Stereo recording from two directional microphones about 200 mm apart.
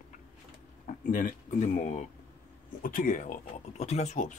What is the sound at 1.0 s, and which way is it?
Speech, 40° left (ahead or behind).